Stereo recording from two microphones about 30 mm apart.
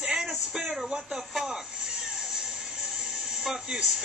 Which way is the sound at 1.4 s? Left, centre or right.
Right.